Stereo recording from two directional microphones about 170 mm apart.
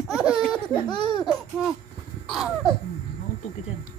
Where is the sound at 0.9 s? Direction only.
25° left (ahead or behind).